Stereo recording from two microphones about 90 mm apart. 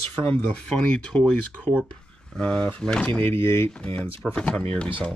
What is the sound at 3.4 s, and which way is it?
Speech, 30° left (ahead or behind).